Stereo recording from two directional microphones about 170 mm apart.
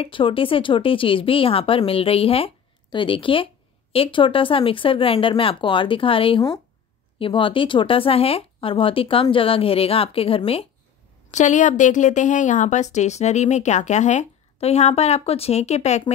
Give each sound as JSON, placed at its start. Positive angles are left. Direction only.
{"t": 0.0, "sound": "speech", "side_deg": 30}
{"t": 11.2, "sound": "a woman's voice", "side_deg": 45}